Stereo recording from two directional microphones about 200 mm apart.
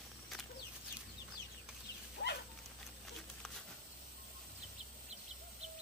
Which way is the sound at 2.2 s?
50° left (ahead or behind).